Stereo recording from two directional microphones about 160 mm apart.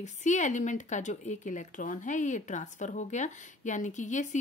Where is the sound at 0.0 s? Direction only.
50° left (ahead or behind).